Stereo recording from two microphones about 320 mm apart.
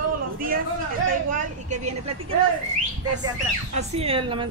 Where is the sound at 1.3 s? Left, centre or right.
Right.